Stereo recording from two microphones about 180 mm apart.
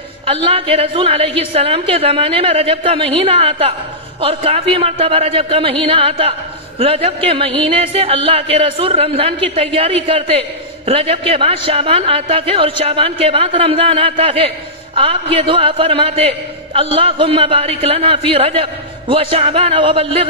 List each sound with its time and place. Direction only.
0.3 s a man's voice: 30° right (ahead or behind)